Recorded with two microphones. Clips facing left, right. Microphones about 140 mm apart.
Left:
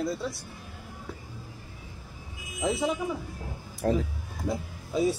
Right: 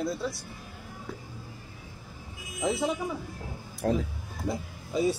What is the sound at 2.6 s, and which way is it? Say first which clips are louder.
Speech: even; centre (ahead or behind).